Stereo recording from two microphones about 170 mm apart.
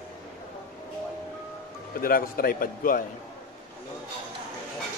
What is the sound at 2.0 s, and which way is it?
Speech, 60° left (ahead or behind).